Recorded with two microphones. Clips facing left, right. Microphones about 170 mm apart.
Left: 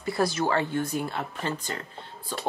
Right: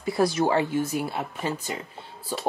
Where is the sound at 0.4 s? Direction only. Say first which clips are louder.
Right 3 dB; 15° right (ahead or behind).